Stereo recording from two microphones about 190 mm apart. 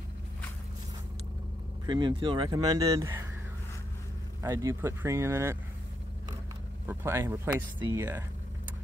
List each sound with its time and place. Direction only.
1.9 s speech: 25° right (ahead or behind)
4.4 s speech: 15° right (ahead or behind)
6.9 s speech: 15° right (ahead or behind)